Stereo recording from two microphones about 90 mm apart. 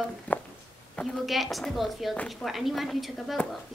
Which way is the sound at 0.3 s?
15° left (ahead or behind).